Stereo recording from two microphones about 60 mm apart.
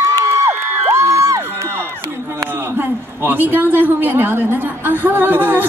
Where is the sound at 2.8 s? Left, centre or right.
Right.